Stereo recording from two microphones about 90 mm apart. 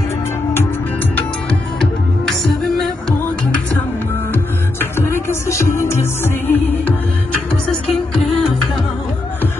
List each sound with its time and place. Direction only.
2.4 s music: 5° left (ahead or behind)
4.7 s music: 25° left (ahead or behind)
7.9 s music: 5° left (ahead or behind)